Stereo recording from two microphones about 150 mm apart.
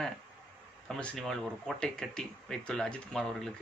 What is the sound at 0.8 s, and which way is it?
A man's voice, 5° left (ahead or behind).